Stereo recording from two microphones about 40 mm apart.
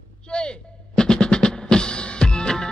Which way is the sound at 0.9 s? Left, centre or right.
Centre.